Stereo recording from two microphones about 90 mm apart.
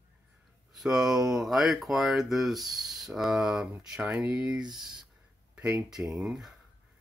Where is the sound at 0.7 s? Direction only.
5° right (ahead or behind).